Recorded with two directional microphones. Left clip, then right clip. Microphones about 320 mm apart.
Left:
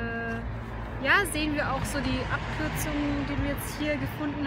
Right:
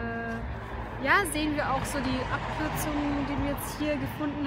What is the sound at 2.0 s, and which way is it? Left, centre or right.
Speech, centre.